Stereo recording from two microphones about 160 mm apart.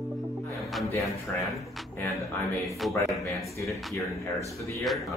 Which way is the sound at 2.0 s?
20° left (ahead or behind).